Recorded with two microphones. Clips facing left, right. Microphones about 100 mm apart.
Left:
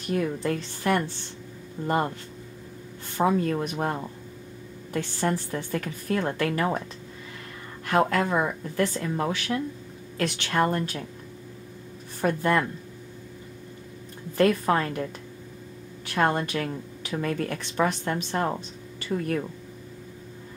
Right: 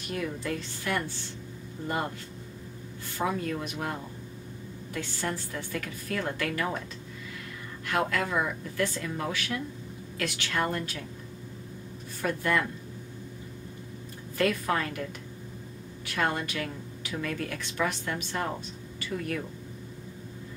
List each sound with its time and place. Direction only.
0.1 s a woman's voice: 35° left (ahead or behind)
3.2 s a woman's voice: 35° left (ahead or behind)
5.5 s a woman's voice: 35° left (ahead or behind)
7.8 s a woman's voice: 40° left (ahead or behind)
12.2 s a woman's voice: 30° left (ahead or behind)
14.3 s a woman's voice: 30° left (ahead or behind)
16.2 s a woman's voice: 35° left (ahead or behind)